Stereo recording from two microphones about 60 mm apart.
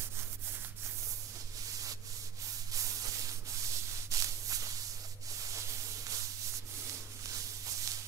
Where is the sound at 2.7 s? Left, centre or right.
Right.